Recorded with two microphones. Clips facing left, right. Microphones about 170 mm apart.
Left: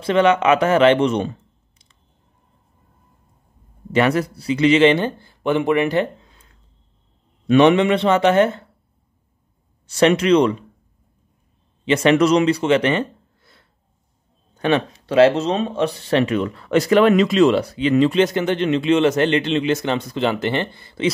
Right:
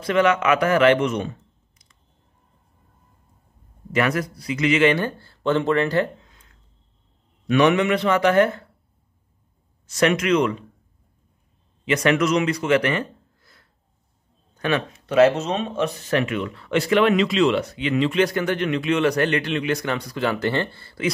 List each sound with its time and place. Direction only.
0.0 s a man's voice: 25° left (ahead or behind)
3.9 s a man's voice: 30° left (ahead or behind)
7.4 s a man's voice: 25° left (ahead or behind)
9.8 s speech: 30° left (ahead or behind)
11.8 s speech: 25° left (ahead or behind)
18.2 s a man's voice: 25° left (ahead or behind)